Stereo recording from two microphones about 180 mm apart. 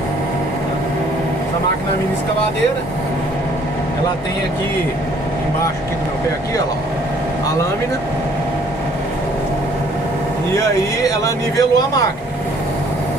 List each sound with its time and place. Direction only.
10.5 s speech: 20° left (ahead or behind)